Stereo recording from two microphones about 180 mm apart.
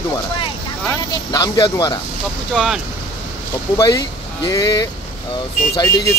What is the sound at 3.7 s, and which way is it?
Speech, 20° left (ahead or behind).